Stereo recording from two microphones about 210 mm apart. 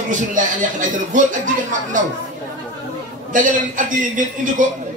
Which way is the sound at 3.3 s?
40° right (ahead or behind).